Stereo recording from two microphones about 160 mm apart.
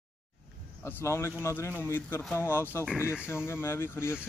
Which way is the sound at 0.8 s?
15° left (ahead or behind).